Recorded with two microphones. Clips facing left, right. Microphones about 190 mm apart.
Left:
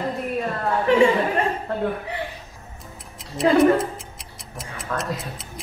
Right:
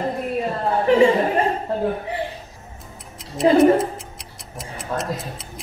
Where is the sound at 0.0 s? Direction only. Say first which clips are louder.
Right 2 dB; 25° right (ahead or behind).